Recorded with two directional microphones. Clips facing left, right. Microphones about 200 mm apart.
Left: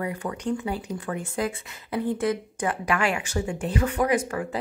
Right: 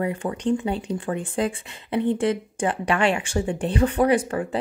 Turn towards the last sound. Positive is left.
turn(degrees=-30)  # may be behind; listen again after turning